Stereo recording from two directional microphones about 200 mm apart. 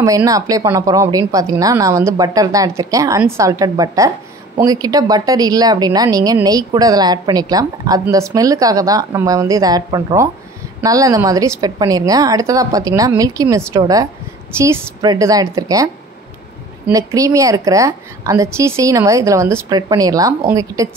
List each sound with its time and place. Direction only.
0.0 s a woman's voice: 15° right (ahead or behind)